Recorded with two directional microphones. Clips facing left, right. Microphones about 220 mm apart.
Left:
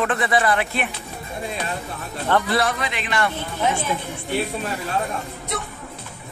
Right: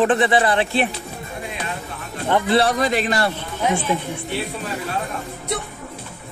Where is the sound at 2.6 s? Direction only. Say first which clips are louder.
Right 6 dB; 40° right (ahead or behind).